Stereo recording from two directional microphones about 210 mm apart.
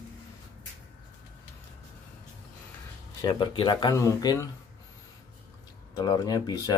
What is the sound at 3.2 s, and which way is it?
Speech, 20° left (ahead or behind).